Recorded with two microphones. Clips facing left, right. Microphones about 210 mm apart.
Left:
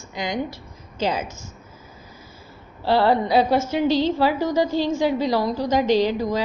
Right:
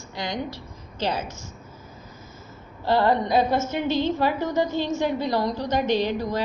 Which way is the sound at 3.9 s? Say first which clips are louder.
Left 3 dB; 35° left (ahead or behind).